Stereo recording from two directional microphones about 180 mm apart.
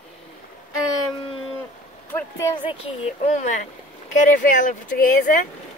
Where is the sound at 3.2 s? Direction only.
40° left (ahead or behind).